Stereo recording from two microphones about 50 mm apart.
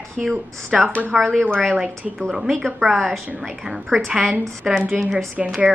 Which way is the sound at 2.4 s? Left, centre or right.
Centre.